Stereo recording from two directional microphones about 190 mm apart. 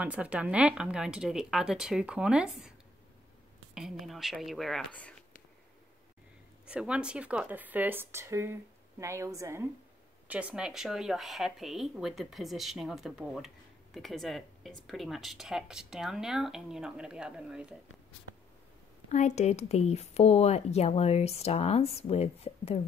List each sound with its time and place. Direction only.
0.0 s speech: 5° right (ahead or behind)
3.7 s speech: centre (ahead or behind)
6.6 s speech: 5° right (ahead or behind)
19.0 s speech: 35° left (ahead or behind)